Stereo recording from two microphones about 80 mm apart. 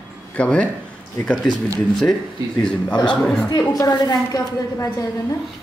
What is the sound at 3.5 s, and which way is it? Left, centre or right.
A woman's voice, left.